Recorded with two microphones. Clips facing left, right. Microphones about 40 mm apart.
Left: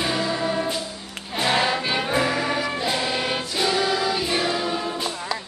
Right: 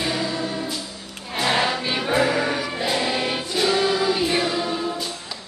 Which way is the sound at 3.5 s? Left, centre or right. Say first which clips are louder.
Right 3 dB; centre.